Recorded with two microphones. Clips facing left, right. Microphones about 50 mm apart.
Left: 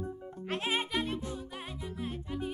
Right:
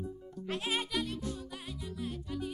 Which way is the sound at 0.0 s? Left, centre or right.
Left.